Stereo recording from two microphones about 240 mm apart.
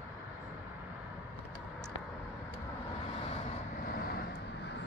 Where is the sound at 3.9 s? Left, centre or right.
Left.